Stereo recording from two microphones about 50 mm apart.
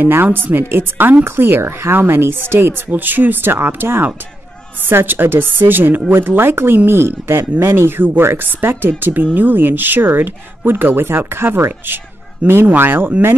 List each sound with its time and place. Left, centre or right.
0.0 s speech: right
2.9 s speech: right
3.5 s speech: right
6.1 s speech: right
8.0 s speech: right